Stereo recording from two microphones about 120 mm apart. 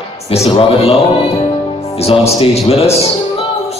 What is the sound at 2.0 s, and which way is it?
Speech, 55° left (ahead or behind).